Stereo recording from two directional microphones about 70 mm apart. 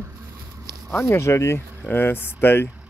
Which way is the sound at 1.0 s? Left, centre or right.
Left.